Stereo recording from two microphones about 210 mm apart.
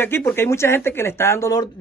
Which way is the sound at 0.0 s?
10° left (ahead or behind).